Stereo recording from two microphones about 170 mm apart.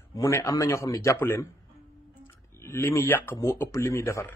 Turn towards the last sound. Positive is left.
turn(degrees=15)  # may be behind; listen again after turning